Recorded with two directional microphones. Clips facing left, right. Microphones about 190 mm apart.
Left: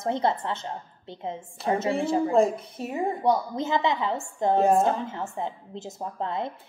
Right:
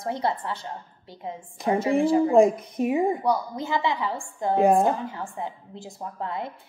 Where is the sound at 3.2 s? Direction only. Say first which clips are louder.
Left 1 dB; 25° left (ahead or behind).